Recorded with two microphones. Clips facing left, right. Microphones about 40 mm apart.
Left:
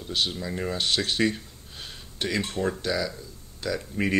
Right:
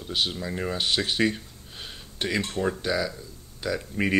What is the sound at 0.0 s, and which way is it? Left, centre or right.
Speech, centre.